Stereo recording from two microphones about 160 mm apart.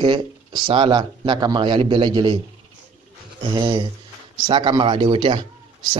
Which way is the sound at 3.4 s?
30° right (ahead or behind).